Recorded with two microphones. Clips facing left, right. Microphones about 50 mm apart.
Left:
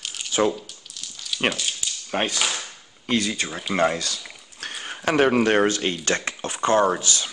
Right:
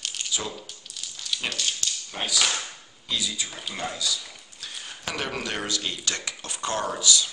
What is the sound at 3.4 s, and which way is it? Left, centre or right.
Speech, left.